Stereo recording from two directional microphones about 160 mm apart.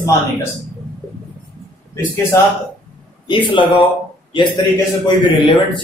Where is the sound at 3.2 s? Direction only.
30° left (ahead or behind).